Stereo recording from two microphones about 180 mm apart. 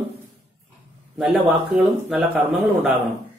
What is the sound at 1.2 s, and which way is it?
A man's voice, centre (ahead or behind).